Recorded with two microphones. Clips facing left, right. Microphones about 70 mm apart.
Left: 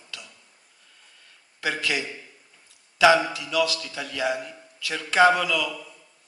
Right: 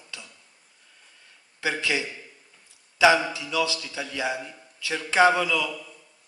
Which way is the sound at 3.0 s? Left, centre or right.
Right.